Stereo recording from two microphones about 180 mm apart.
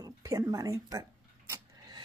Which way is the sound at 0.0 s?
20° right (ahead or behind).